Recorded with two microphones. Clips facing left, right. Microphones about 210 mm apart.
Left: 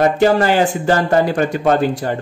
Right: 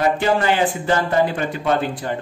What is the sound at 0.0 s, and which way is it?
Speech, 45° left (ahead or behind).